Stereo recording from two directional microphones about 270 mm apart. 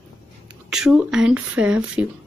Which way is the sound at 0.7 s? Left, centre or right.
Centre.